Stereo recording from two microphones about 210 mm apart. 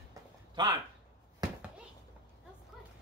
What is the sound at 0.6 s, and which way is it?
Speech, 20° right (ahead or behind).